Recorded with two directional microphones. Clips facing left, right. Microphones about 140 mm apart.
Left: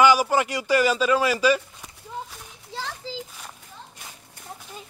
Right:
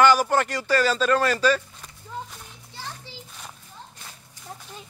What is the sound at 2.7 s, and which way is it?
Children playing, 90° left.